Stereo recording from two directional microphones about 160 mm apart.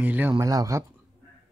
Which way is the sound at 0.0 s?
10° right (ahead or behind).